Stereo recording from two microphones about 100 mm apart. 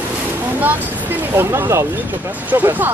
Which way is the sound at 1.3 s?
25° right (ahead or behind).